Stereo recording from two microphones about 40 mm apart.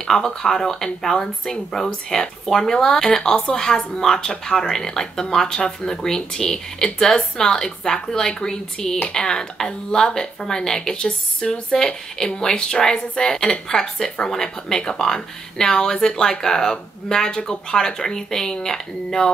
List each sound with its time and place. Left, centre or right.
0.0 s a woman's voice: centre